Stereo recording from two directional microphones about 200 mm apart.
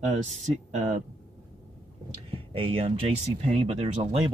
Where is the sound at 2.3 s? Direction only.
25° right (ahead or behind).